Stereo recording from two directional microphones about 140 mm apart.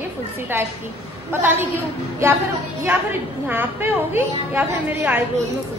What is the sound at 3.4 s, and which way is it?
A woman's voice, 15° right (ahead or behind).